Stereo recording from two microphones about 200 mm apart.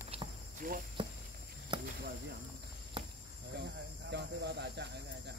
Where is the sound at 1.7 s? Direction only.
20° right (ahead or behind).